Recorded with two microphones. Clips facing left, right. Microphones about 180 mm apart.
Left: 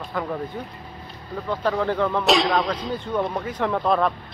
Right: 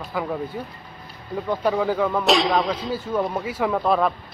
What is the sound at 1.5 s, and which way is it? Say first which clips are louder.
Speech: right 1 dB; 10° right (ahead or behind).